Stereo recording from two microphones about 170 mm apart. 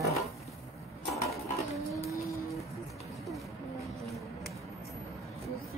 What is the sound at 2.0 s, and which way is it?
Vehicle, 20° left (ahead or behind).